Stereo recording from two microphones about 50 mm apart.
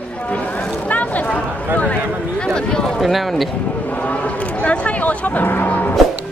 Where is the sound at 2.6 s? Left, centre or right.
Centre.